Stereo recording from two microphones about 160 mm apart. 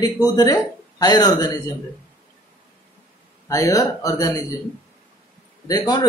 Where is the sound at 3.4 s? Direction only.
20° left (ahead or behind).